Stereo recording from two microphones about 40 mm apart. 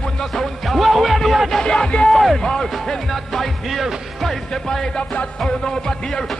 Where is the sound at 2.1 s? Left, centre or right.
Centre.